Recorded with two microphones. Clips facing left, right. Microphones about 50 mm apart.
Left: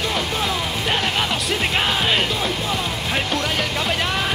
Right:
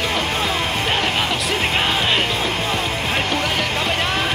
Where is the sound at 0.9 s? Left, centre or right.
Centre.